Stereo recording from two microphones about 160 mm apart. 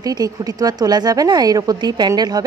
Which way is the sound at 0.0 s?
20° right (ahead or behind).